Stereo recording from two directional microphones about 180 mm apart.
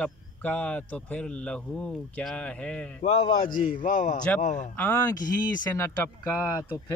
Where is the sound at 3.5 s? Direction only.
50° left (ahead or behind).